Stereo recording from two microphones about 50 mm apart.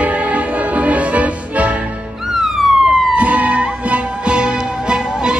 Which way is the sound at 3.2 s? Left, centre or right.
Right.